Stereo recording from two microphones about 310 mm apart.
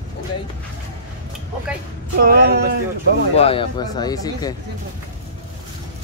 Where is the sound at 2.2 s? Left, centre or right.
Right.